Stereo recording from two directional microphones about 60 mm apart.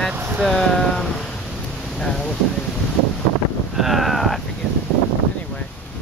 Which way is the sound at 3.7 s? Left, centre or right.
Centre.